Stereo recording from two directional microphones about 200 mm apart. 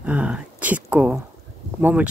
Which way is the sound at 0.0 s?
5° right (ahead or behind).